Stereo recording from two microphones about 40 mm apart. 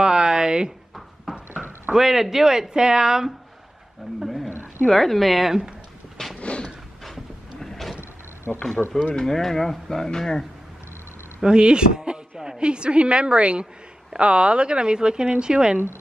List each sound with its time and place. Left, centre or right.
0.0 s a sound: centre
1.3 s horse: centre
2.0 s speech: centre
4.2 s roaring cats: centre
4.8 s speech: centre
6.4 s a sound: left
7.6 s vehicle: centre
8.5 s speech: centre
11.4 s a woman's voice: right